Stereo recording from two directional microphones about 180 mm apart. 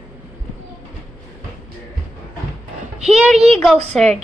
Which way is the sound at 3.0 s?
5° right (ahead or behind).